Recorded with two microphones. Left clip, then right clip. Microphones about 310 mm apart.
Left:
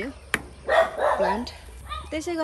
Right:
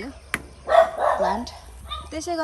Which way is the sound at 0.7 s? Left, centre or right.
Right.